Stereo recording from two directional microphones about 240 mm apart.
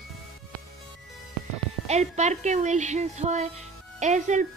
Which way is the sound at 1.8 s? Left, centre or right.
Right.